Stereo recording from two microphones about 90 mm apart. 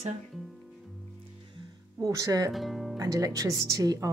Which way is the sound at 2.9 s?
45° right (ahead or behind).